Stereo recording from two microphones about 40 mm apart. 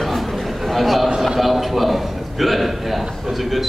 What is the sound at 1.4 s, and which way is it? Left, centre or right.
A man's voice, centre.